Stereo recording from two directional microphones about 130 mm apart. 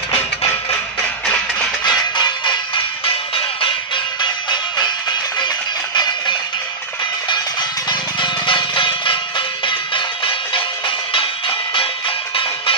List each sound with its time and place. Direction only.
1.2 s a sound: 5° left (ahead or behind)
2.1 s music: 35° left (ahead or behind)
7.9 s music: 40° left (ahead or behind)